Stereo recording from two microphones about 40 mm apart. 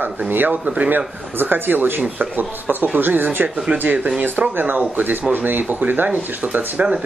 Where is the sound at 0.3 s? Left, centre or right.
Right.